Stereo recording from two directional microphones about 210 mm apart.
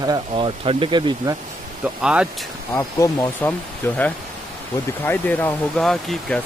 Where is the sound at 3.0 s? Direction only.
10° left (ahead or behind).